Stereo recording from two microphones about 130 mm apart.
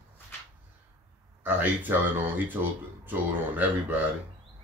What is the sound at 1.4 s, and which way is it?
A man's voice, 15° right (ahead or behind).